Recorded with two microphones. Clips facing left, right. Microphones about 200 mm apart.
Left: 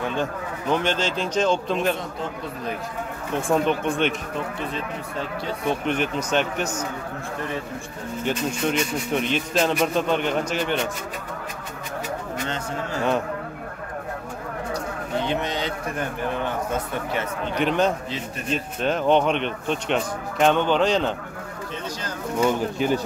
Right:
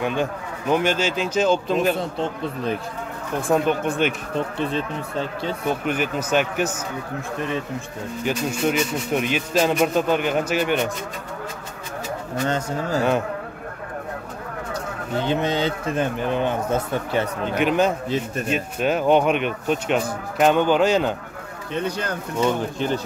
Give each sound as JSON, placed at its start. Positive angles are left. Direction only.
{"t": 0.0, "sound": "speech", "side_deg": -15}
{"t": 2.0, "sound": "a man's voice", "side_deg": -30}
{"t": 3.4, "sound": "speech", "side_deg": 0}
{"t": 5.7, "sound": "speech", "side_deg": -5}
{"t": 8.2, "sound": "speech", "side_deg": -10}
{"t": 12.4, "sound": "speech", "side_deg": -40}
{"t": 15.2, "sound": "a man's voice", "side_deg": -30}
{"t": 17.6, "sound": "speech", "side_deg": -5}
{"t": 21.7, "sound": "speech", "side_deg": -60}
{"t": 22.4, "sound": "speech", "side_deg": 10}